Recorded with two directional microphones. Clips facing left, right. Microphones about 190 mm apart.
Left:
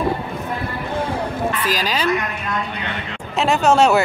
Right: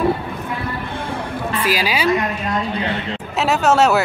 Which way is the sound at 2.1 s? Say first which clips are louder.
Right 3 dB; 30° right (ahead or behind).